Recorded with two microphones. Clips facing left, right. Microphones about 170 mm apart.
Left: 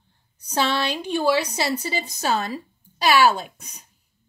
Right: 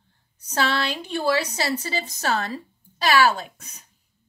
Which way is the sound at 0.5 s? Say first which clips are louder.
Left 1 dB; 15° left (ahead or behind).